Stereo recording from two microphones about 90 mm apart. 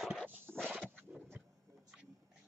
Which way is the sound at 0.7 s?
20° right (ahead or behind).